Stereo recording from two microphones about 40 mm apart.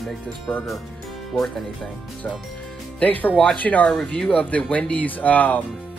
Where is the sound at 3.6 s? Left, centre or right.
Left.